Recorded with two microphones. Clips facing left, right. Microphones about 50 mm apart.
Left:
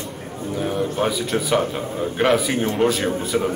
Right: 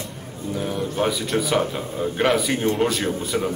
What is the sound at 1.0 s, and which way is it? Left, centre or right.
Speech, centre.